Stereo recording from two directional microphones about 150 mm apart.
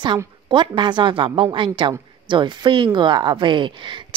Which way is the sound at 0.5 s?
30° right (ahead or behind).